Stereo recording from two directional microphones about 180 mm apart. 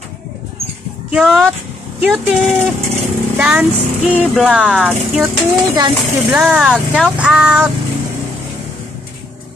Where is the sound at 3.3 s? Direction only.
5° right (ahead or behind).